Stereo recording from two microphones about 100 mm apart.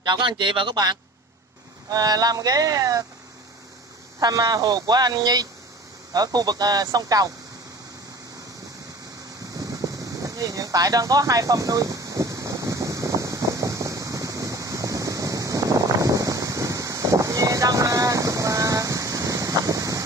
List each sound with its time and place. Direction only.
0.0 s speech: 50° right (ahead or behind)
1.9 s speech: 40° right (ahead or behind)
4.2 s speech: 40° right (ahead or behind)
9.6 s a sound: 35° right (ahead or behind)